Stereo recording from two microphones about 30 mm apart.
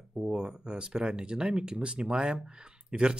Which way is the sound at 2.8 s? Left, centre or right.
Right.